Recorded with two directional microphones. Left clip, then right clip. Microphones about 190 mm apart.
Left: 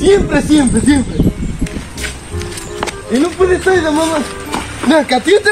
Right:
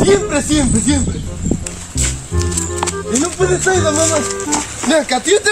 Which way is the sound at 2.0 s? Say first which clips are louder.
Right 4 dB; 60° right (ahead or behind).